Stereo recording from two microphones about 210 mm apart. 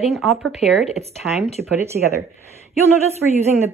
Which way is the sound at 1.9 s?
45° right (ahead or behind).